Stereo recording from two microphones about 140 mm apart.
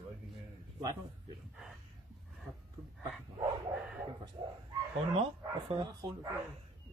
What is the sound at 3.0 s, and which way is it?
Dog, 30° right (ahead or behind).